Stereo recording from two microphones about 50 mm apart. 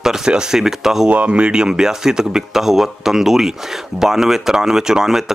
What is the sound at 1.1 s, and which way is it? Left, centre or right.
Speech, right.